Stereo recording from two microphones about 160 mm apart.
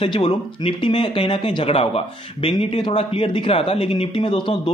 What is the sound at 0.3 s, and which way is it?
Speech, 30° left (ahead or behind).